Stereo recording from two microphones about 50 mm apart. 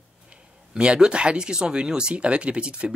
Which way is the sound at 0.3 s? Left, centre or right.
Centre.